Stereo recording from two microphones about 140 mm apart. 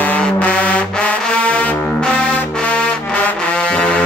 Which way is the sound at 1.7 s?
15° left (ahead or behind).